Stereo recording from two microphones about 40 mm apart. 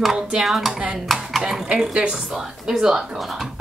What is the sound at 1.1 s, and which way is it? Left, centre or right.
A woman's voice, centre.